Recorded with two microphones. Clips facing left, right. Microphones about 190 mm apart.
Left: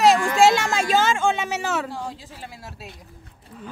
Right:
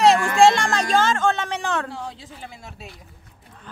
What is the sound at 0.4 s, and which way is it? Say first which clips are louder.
A woman's voice: right 1 dB; 5° left (ahead or behind).